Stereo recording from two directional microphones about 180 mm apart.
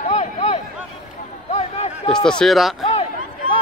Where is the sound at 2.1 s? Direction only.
5° left (ahead or behind).